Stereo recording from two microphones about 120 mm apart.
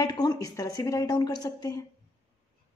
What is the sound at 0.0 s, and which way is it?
Speech, 35° left (ahead or behind).